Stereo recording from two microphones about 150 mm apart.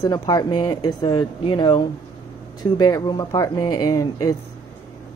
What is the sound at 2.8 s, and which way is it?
Speech, 30° left (ahead or behind).